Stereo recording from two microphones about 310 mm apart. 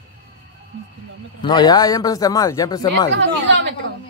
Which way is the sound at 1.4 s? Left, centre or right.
Centre.